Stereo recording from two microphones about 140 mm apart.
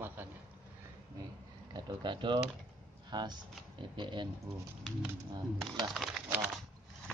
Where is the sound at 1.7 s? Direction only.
30° right (ahead or behind).